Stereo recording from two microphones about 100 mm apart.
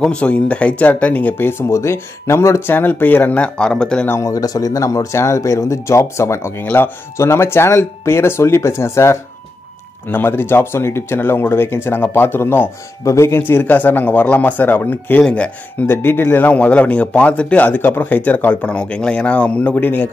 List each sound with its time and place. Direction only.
0.0 s speech: 10° left (ahead or behind)
4.1 s speech: 35° left (ahead or behind)